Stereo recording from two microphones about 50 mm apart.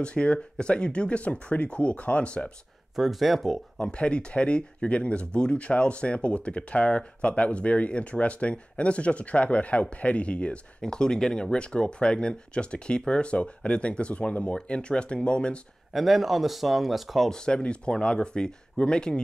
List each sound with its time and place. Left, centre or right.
0.0 s speech: left
3.0 s speech: centre
3.8 s speech: left
15.9 s speech: centre
17.3 s speech: centre